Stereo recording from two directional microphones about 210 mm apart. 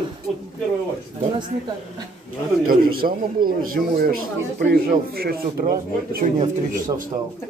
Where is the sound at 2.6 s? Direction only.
45° right (ahead or behind).